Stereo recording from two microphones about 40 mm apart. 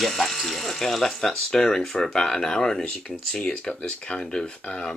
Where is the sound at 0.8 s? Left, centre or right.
Centre.